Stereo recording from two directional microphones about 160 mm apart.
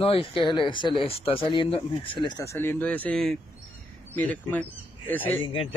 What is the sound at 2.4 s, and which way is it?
Speech, 15° left (ahead or behind).